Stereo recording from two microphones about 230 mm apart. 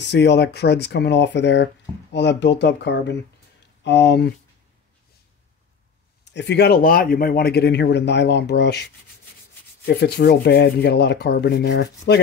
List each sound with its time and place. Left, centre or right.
0.0 s speech: left
6.3 s speech: left
9.8 s speech: left